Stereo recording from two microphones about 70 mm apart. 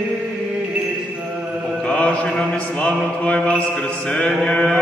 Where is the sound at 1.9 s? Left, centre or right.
Centre.